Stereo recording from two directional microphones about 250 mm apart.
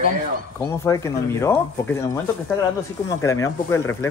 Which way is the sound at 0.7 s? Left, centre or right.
Centre.